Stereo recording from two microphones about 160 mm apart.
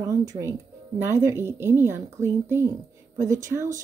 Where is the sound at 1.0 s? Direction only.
15° right (ahead or behind).